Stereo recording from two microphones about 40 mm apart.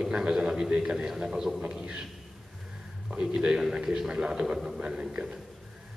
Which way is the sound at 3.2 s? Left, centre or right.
Right.